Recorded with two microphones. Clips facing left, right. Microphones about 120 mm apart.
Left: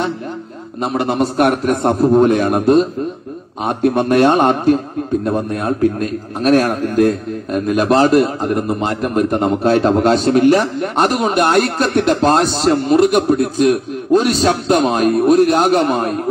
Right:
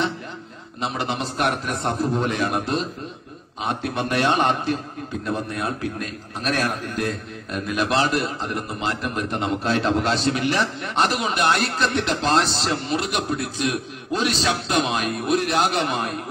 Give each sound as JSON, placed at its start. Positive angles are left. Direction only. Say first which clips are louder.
{"t": 0.8, "sound": "a man's voice", "louder": "left 9 dB", "side_deg": 45}